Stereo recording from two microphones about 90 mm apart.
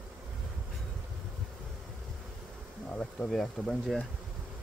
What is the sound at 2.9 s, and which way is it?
Speech, 10° left (ahead or behind).